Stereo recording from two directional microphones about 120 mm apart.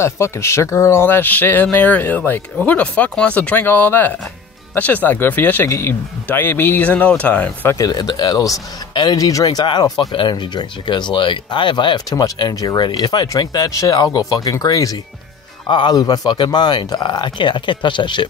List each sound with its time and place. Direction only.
0.0 s speech: 25° left (ahead or behind)
7.7 s speech: 30° left (ahead or behind)